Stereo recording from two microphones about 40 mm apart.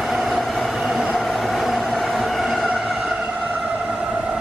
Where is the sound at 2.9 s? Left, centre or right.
Centre.